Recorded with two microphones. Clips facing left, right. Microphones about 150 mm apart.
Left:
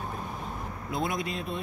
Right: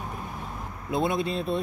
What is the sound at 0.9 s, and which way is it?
Speech, 25° right (ahead or behind).